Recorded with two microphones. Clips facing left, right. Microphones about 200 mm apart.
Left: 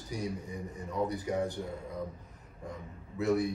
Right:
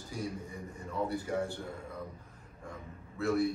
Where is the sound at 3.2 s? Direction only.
15° left (ahead or behind).